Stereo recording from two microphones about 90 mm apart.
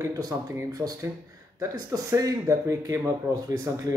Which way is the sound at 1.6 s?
40° right (ahead or behind).